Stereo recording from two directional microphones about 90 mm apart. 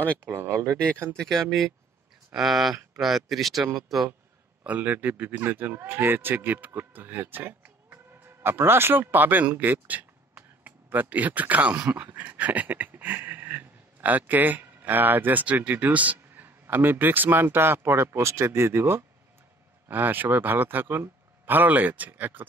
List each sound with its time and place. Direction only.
0.2 s speech: 25° right (ahead or behind)
1.2 s speech: centre (ahead or behind)
4.6 s speech: 20° right (ahead or behind)